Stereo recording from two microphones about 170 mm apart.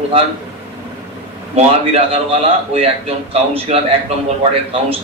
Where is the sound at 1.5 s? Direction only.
35° right (ahead or behind).